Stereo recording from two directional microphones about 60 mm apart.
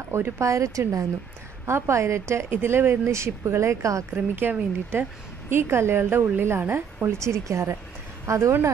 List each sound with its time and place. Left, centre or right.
0.1 s speech: right
1.7 s a woman's voice: right
4.1 s a woman's voice: right